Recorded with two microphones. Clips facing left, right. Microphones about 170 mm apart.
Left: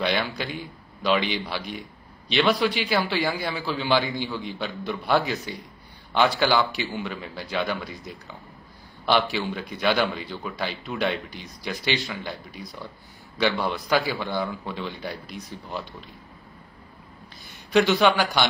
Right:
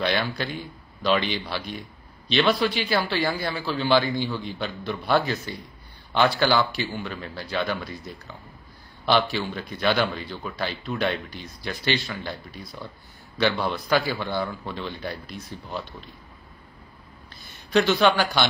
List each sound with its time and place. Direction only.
1.0 s a man's voice: 15° left (ahead or behind)
17.4 s speech: 15° left (ahead or behind)